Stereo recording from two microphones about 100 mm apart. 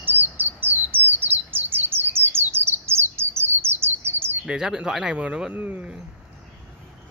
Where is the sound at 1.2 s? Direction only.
20° right (ahead or behind).